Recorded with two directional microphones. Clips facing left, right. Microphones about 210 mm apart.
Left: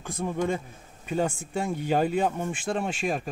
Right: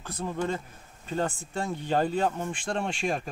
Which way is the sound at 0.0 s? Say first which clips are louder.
Left 3 dB; 10° left (ahead or behind).